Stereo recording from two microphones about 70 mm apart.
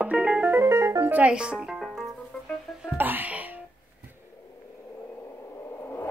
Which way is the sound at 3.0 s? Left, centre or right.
Right.